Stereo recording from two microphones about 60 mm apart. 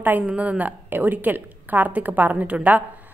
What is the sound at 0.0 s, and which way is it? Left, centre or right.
A woman's voice, right.